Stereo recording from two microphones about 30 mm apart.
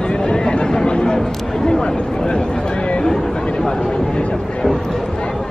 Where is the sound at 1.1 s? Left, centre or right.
Centre; by 3.0 s left.